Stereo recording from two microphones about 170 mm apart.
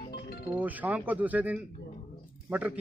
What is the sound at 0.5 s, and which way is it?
Speech, 10° right (ahead or behind).